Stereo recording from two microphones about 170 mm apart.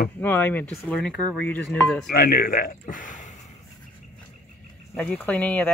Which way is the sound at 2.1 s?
60° left (ahead or behind).